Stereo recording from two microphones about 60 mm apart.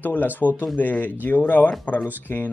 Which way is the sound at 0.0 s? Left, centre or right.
Left.